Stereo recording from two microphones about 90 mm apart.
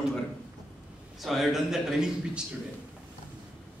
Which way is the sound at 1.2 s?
Centre (ahead or behind).